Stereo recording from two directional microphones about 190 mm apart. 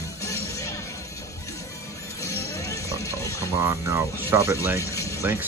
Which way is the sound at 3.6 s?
15° right (ahead or behind).